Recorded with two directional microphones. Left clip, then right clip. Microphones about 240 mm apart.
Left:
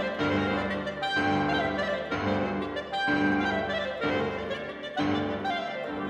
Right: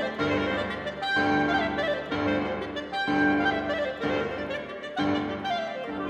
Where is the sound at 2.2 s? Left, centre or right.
Centre.